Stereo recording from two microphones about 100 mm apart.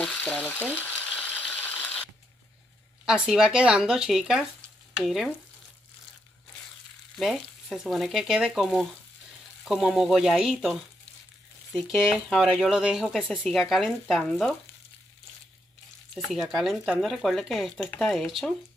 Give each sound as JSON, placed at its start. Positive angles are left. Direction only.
{"t": 0.0, "sound": "speech", "side_deg": 10}
{"t": 0.5, "sound": "mechanisms", "side_deg": 15}
{"t": 3.1, "sound": "speech", "side_deg": -5}
{"t": 4.9, "sound": "frying", "side_deg": -5}
{"t": 7.2, "sound": "speech", "side_deg": -5}
{"t": 16.3, "sound": "speech", "side_deg": -5}